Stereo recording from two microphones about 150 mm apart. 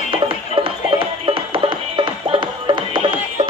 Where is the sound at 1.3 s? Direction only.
35° right (ahead or behind).